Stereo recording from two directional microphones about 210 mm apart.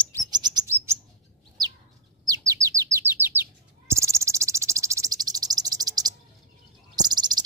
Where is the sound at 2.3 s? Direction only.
15° right (ahead or behind).